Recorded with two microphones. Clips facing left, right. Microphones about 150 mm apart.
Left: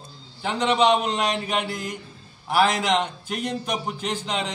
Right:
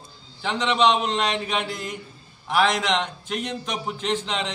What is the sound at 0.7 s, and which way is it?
A man's voice, 10° left (ahead or behind).